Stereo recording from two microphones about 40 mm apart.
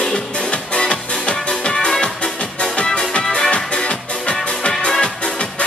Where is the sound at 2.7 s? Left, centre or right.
Left.